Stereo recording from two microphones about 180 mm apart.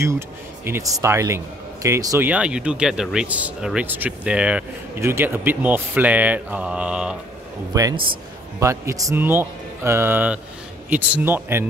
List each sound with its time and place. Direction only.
0.7 s speech: 15° right (ahead or behind)
7.7 s a man's voice: 20° right (ahead or behind)